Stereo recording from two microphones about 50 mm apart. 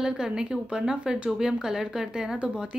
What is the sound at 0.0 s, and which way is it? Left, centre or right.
Speech, centre.